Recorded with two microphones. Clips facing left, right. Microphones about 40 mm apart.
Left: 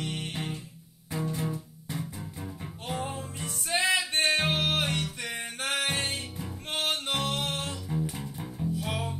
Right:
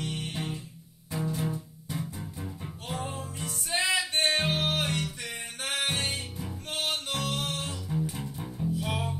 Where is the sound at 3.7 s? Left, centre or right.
Left.